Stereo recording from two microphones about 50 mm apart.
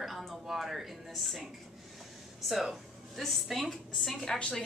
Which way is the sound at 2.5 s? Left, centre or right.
Centre.